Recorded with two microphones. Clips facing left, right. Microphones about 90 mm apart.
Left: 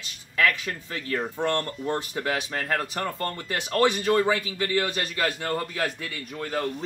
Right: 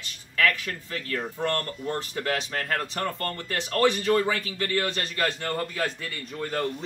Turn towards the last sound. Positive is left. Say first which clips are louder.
# even
turn(degrees=0)  # may be behind; listen again after turning